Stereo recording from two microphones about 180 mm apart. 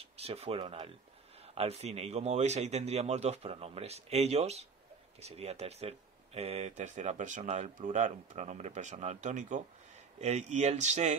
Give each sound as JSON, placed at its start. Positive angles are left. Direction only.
{"t": 0.0, "sound": "speech", "side_deg": -35}